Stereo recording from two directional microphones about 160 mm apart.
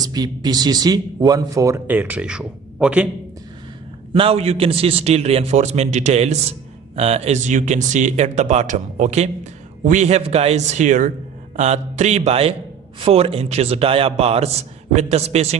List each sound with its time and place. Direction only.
0.0 s speech: 25° right (ahead or behind); by 3.1 s 5° right (ahead or behind)
4.1 s a man's voice: 35° right (ahead or behind)